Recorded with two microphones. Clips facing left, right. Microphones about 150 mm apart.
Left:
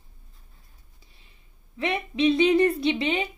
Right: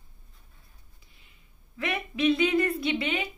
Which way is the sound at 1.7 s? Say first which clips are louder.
Left 4 dB; 30° left (ahead or behind).